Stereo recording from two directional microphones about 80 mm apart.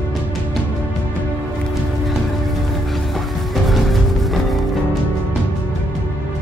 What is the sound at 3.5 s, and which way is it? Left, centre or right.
Music, centre.